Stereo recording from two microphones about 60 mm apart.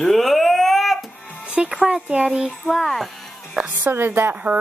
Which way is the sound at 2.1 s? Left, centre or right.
Centre.